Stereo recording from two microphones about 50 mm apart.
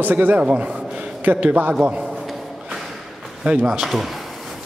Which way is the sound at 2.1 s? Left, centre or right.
Centre.